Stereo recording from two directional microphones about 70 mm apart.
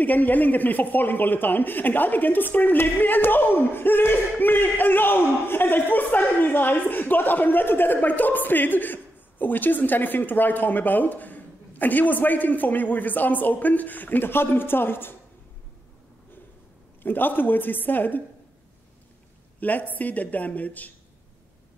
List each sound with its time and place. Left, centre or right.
0.0 s speech: left
17.0 s speech: left
19.6 s speech: left